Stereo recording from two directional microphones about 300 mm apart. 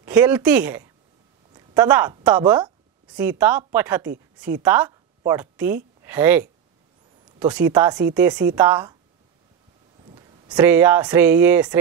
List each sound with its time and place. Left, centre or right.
0.0 s a woman's voice: centre
10.0 s a sound: centre
10.6 s speech: centre